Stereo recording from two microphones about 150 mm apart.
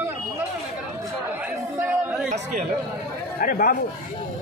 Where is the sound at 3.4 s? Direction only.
70° left (ahead or behind).